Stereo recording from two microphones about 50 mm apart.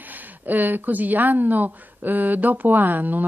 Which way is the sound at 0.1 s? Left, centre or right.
Right.